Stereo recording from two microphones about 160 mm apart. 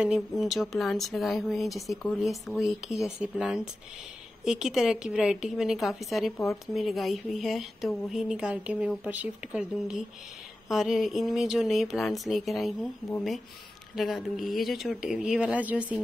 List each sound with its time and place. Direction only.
0.0 s speech: centre (ahead or behind)
6.3 s speech: 20° left (ahead or behind)
6.7 s speech: centre (ahead or behind)
13.9 s speech: centre (ahead or behind)